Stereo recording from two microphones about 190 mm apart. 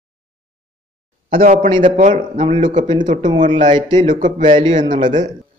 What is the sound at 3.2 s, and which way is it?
Speech, 25° right (ahead or behind).